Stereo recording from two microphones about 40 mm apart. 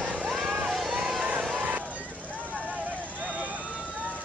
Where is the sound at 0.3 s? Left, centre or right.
Centre.